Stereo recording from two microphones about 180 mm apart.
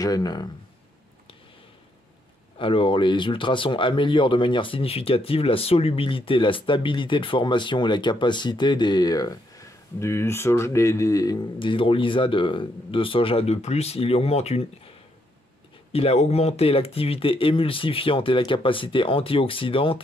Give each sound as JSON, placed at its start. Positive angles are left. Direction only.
{"t": 0.0, "sound": "speech", "side_deg": 20}
{"t": 2.6, "sound": "speech", "side_deg": 30}
{"t": 15.9, "sound": "speech", "side_deg": 35}